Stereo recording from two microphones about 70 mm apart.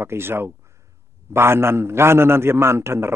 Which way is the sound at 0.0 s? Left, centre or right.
Right.